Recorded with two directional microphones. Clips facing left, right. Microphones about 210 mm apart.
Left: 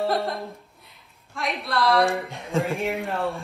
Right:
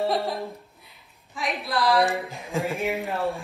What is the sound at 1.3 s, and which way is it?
Speech, centre (ahead or behind).